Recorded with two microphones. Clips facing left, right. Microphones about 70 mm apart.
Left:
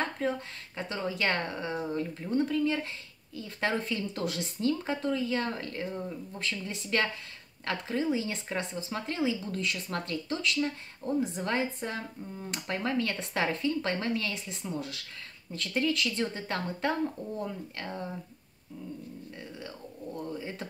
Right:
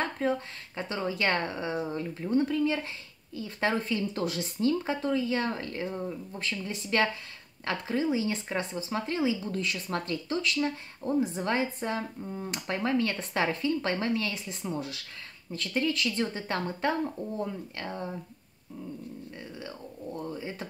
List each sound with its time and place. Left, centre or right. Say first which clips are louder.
0.2 s speech: right 3 dB; centre
12.2 s speech: right 4 dB; centre
12.4 s speech: right 2 dB; centre
19.5 s speech: right 2 dB; centre